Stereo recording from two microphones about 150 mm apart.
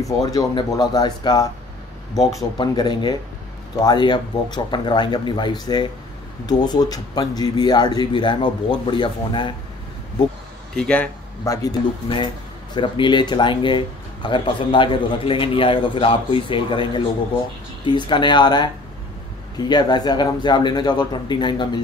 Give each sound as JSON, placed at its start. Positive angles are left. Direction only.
{"t": 0.2, "sound": "speech", "side_deg": 25}
{"t": 10.8, "sound": "speech", "side_deg": 5}
{"t": 11.4, "sound": "speech", "side_deg": 20}
{"t": 12.7, "sound": "speech", "side_deg": 30}